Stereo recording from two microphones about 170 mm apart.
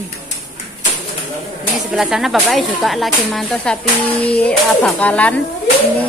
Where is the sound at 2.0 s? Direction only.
5° right (ahead or behind).